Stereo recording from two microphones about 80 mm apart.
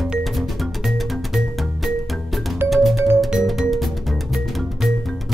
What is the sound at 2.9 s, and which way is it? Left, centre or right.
Music, right.